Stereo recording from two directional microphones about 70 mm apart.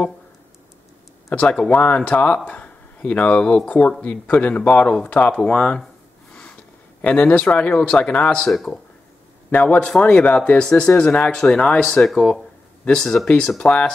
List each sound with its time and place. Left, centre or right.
1.3 s speech: centre
5.3 s speech: centre
7.0 s speech: left
8.2 s speech: centre
9.5 s speech: left
12.0 s speech: centre